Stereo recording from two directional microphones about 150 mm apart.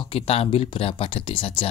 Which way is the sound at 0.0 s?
35° left (ahead or behind).